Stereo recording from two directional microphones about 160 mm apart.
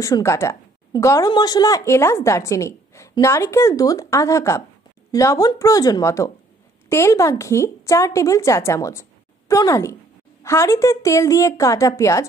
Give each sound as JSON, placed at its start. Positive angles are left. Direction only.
{"t": 0.0, "sound": "a woman's voice", "side_deg": 20}